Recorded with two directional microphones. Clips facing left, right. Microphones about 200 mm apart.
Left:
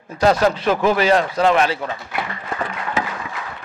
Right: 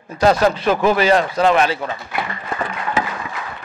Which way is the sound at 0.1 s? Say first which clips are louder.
Right 1 dB; 10° right (ahead or behind).